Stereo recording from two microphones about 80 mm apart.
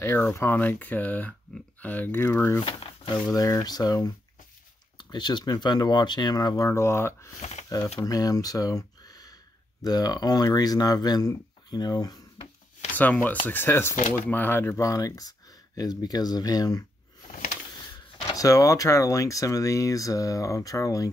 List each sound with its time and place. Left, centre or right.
0.0 s speech: left
2.6 s speech: left
3.3 s speech: left
5.1 s speech: left
6.7 s speech: left
12.9 s speech: left
14.8 s speech: left